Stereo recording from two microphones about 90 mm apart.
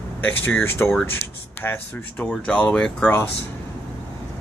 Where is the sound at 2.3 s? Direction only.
10° left (ahead or behind).